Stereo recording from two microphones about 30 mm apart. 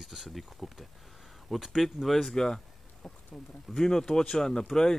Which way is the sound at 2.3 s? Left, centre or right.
Left.